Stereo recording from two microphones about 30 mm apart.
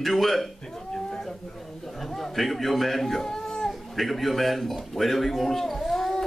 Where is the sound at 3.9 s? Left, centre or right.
Centre.